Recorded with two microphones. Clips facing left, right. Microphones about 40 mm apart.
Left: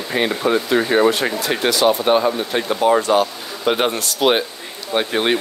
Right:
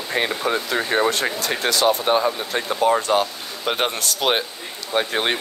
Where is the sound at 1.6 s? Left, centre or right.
Left.